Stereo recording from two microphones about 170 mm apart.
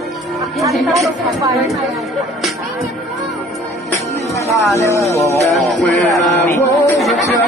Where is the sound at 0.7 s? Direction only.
Centre (ahead or behind).